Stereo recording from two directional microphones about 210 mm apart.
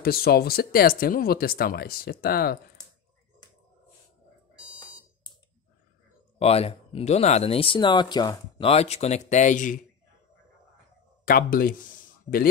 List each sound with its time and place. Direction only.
0.0 s speech: 45° left (ahead or behind)
6.4 s speech: 30° left (ahead or behind)
11.2 s speech: 45° left (ahead or behind)